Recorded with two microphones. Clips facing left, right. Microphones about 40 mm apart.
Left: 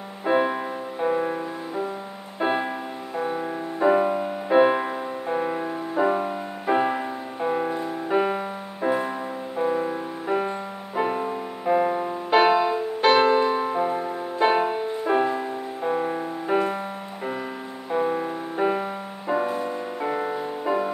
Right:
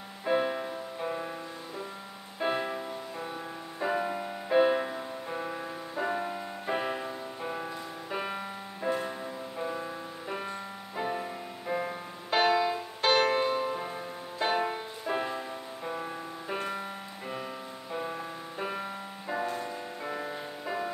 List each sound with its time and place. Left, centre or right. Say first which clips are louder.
0.2 s music: left 6 dB; left
3.2 s music: left 16 dB; left
3.8 s music: left 10 dB; left
17.9 s music: left 12 dB; left